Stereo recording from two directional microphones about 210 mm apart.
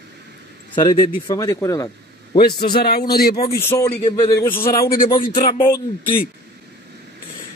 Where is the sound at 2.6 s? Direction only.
50° left (ahead or behind).